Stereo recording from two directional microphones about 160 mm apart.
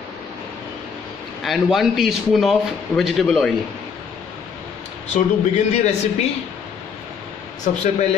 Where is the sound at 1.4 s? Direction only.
Centre (ahead or behind).